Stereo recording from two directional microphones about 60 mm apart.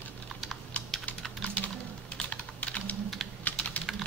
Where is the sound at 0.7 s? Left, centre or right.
Left.